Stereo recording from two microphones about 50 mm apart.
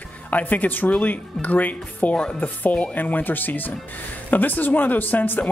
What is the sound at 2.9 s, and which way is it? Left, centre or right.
Speech, left.